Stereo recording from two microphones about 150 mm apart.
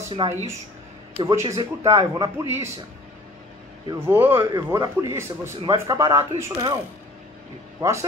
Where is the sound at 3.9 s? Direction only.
15° right (ahead or behind).